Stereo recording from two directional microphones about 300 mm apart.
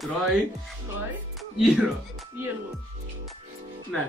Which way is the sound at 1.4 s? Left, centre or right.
Centre.